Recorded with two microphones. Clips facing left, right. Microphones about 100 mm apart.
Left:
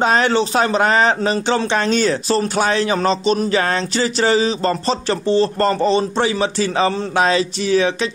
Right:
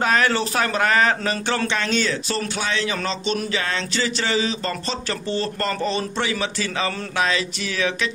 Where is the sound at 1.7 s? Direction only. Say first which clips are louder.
Left 6 dB; 35° left (ahead or behind).